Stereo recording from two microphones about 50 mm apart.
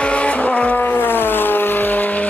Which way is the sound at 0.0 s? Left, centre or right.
Left.